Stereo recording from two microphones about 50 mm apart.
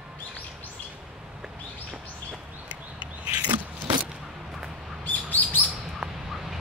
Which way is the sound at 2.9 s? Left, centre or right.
Right.